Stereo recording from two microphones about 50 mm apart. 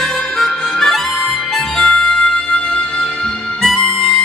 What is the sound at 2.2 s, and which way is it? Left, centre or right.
Music, left.